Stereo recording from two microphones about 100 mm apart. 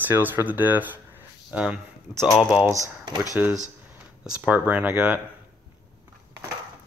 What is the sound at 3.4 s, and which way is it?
Speech, 15° right (ahead or behind).